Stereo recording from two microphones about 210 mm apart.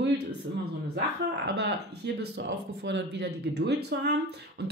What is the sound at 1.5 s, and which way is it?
Speech, 55° right (ahead or behind).